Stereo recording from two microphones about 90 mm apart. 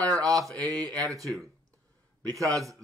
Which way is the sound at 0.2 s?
40° right (ahead or behind).